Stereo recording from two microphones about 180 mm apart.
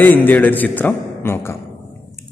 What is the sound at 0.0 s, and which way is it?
A man's voice, 10° left (ahead or behind).